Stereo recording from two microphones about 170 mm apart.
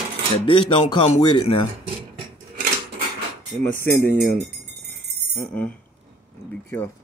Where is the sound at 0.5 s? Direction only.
30° left (ahead or behind).